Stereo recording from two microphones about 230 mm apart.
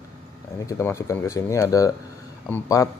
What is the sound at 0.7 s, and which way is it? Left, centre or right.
Speech, centre.